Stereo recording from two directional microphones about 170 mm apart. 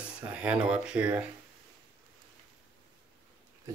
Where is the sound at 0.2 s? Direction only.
5° right (ahead or behind).